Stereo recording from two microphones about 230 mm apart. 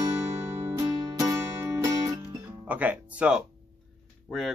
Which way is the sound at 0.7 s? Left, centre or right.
Centre.